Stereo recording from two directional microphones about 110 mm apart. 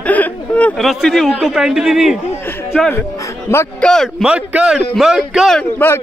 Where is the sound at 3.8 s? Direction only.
10° left (ahead or behind).